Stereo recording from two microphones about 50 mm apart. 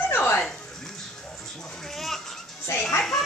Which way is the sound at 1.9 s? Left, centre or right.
Centre.